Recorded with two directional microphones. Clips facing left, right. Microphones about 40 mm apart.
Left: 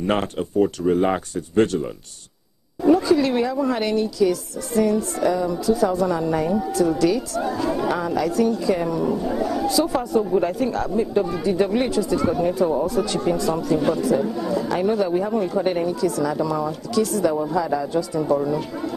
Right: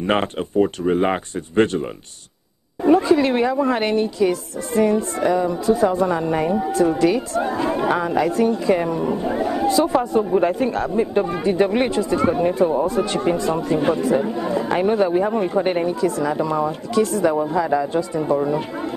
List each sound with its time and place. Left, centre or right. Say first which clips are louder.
0.0 s speech: right 2 dB; right